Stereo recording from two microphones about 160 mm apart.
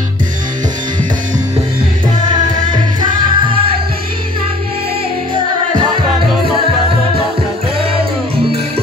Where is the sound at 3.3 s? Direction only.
30° right (ahead or behind).